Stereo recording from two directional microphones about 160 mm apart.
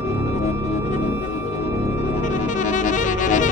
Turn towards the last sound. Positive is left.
turn(degrees=50)  # may be behind; listen again after turning